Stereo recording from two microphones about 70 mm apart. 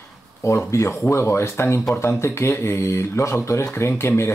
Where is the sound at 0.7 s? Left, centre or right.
Left.